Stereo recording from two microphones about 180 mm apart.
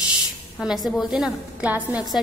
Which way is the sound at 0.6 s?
Centre (ahead or behind).